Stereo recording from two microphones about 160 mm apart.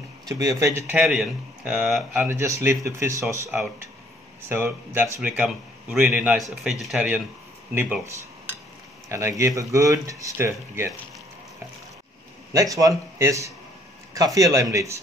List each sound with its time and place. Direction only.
0.3 s speech: 20° right (ahead or behind); by 2.2 s centre (ahead or behind)
2.2 s speech: 20° right (ahead or behind)
9.1 s speech: 15° right (ahead or behind)
12.5 s speech: 20° right (ahead or behind)